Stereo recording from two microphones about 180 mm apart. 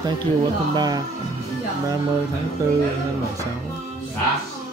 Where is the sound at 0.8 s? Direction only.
20° right (ahead or behind).